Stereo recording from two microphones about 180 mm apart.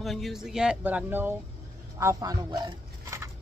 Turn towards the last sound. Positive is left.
turn(degrees=-15)  # may be behind; listen again after turning